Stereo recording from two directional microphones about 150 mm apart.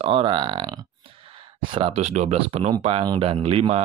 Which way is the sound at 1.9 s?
45° right (ahead or behind).